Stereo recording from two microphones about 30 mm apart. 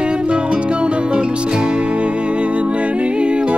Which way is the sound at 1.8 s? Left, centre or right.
Right.